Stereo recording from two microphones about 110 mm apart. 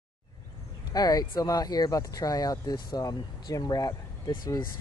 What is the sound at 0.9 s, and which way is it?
Speech, 35° left (ahead or behind).